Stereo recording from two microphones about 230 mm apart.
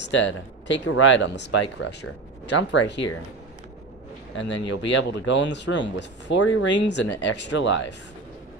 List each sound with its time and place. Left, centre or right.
0.0 s speech: left
4.4 s speech: left